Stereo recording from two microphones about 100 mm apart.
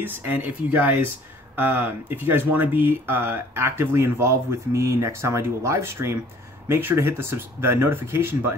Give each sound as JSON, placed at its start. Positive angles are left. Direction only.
{"t": 0.0, "sound": "speech", "side_deg": -20}